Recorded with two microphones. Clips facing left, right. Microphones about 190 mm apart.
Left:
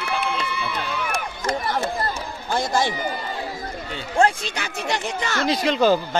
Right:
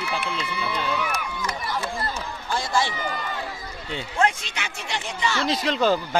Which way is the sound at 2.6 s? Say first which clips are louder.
Left 2 dB; 45° left (ahead or behind).